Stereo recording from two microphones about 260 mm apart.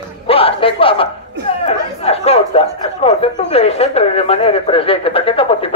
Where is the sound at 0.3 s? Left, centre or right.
Left.